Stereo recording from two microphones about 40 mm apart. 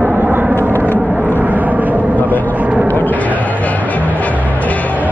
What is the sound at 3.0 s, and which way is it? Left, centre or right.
Music, left.